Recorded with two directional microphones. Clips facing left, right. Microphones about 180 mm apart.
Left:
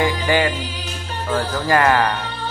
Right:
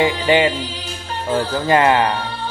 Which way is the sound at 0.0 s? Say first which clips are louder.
Right 3 dB; 25° right (ahead or behind).